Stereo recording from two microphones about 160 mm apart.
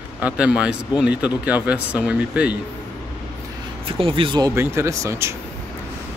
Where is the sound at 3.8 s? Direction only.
35° right (ahead or behind).